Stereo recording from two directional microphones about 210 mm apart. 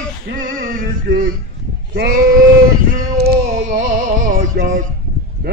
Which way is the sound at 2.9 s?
50° right (ahead or behind).